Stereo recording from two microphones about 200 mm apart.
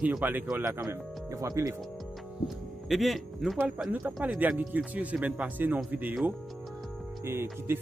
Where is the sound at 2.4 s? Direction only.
Centre (ahead or behind).